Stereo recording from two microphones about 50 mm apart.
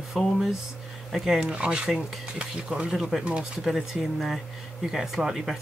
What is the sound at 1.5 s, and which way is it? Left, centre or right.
Speech, centre.